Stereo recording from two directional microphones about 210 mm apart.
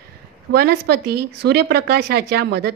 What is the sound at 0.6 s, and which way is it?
Speech, 50° right (ahead or behind).